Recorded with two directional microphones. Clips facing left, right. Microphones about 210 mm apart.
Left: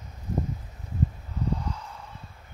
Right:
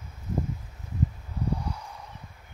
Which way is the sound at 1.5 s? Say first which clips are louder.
Even; 10° right (ahead or behind).